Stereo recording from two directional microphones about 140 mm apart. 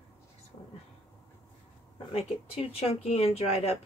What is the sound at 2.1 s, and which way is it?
Speech, 45° left (ahead or behind).